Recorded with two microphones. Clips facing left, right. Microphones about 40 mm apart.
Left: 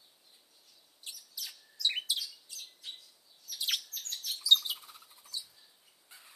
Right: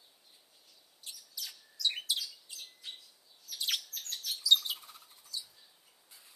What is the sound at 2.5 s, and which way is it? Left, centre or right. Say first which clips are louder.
Bird: even; right.